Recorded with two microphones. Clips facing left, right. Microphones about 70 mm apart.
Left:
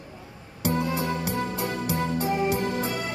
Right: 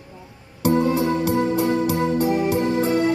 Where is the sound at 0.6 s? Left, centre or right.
Right.